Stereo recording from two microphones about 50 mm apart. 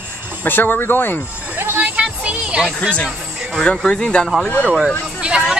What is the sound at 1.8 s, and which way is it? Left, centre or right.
Music, right.